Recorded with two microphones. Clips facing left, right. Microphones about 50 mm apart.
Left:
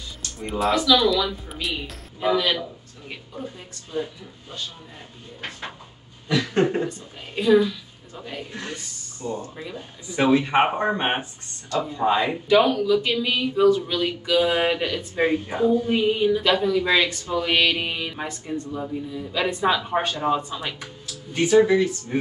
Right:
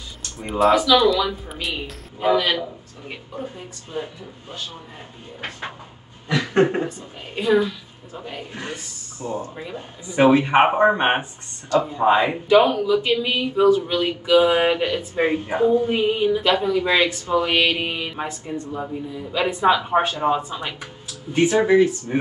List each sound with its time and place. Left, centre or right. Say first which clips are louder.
0.4 s a woman's voice: right 5 dB; centre
1.8 s speech: right 2 dB; centre
6.2 s a sound: right 3 dB; right
6.9 s speech: right 2 dB; centre